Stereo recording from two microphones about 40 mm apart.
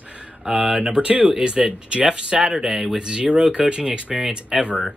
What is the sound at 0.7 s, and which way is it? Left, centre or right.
Speech, right.